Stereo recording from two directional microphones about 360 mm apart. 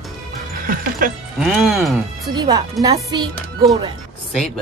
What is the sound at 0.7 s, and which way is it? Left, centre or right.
Speech, right.